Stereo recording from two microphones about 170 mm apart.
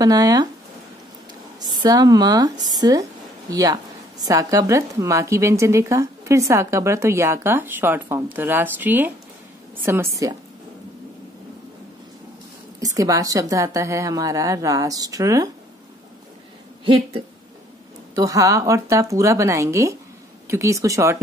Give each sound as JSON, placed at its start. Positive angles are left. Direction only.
{"t": 0.0, "sound": "a woman's voice", "side_deg": -20}
{"t": 1.6, "sound": "a woman's voice", "side_deg": -25}
{"t": 12.8, "sound": "a woman's voice", "side_deg": -20}
{"t": 16.8, "sound": "a woman's voice", "side_deg": -30}
{"t": 18.1, "sound": "a woman's voice", "side_deg": -20}